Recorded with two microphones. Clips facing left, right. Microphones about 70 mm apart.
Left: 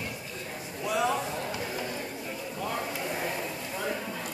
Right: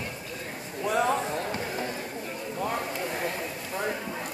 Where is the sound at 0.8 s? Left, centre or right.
Right.